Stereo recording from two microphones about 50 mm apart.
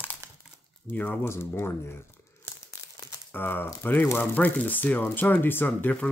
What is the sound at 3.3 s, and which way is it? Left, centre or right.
Speech, left.